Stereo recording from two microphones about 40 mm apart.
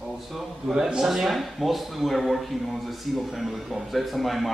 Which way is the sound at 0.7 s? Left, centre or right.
Centre.